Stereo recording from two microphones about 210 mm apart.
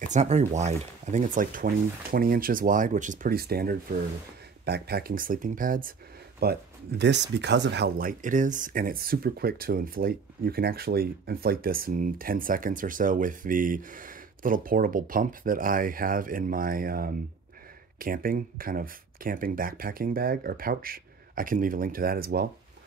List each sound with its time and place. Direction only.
0.0 s speech: 35° right (ahead or behind)